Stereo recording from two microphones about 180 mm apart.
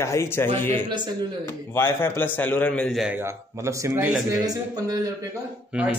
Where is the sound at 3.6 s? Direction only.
15° right (ahead or behind).